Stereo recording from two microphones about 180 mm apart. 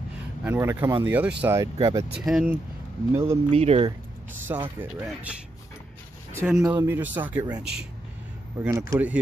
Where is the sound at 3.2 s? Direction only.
30° right (ahead or behind).